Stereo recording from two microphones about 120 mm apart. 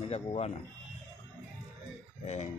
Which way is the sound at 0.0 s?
60° left (ahead or behind).